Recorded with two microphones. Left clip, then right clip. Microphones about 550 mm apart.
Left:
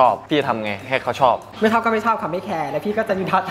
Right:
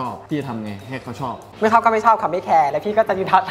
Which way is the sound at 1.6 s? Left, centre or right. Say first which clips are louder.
Right 3 dB; right.